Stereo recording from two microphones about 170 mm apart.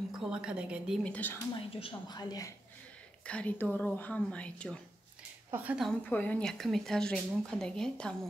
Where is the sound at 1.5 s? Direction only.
30° left (ahead or behind).